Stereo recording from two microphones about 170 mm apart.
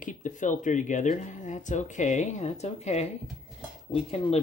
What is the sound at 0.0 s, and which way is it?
Speech, 50° left (ahead or behind).